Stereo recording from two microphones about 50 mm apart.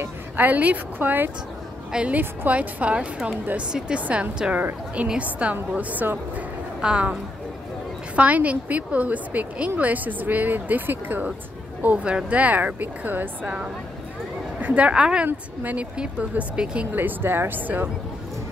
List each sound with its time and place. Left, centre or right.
0.4 s a woman's voice: right
1.9 s a woman's voice: right
2.1 s a woman's voice: right
5.2 s a woman's voice: right
6.8 s a woman's voice: right
8.2 s a woman's voice: right
11.8 s a woman's voice: right
14.6 s a woman's voice: right
15.2 s a woman's voice: right
16.9 s a woman's voice: right